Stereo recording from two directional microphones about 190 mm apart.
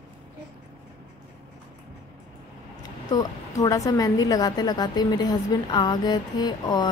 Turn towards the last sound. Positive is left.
turn(degrees=20)  # may be behind; listen again after turning